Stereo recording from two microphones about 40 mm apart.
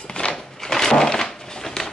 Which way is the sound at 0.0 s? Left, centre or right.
Left.